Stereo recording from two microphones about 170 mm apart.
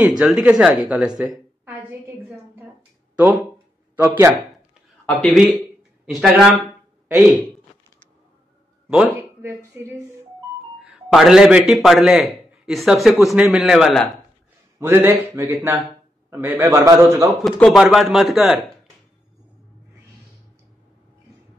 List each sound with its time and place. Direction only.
0.2 s a man's voice: 5° right (ahead or behind)
0.8 s a sound: 5° right (ahead or behind)
3.9 s a man's voice: 15° right (ahead or behind)
5.0 s a man's voice: 5° left (ahead or behind)
8.8 s speech: 10° right (ahead or behind)
10.8 s a man's voice: centre (ahead or behind)
14.8 s a man's voice: 10° right (ahead or behind)
17.5 s a man's voice: centre (ahead or behind)